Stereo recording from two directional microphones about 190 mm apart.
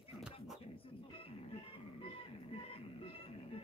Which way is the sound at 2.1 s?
30° left (ahead or behind).